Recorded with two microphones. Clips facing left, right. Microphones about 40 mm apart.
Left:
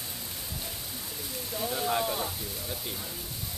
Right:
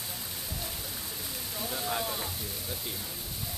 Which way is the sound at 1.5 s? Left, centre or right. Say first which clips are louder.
Left 5 dB; centre.